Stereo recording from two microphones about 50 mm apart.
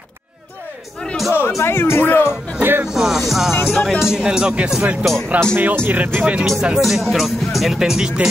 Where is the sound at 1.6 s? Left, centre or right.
Left.